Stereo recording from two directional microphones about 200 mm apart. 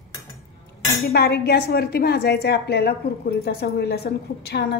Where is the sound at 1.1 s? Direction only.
50° left (ahead or behind).